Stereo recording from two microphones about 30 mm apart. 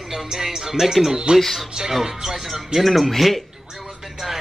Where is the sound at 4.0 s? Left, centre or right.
Centre.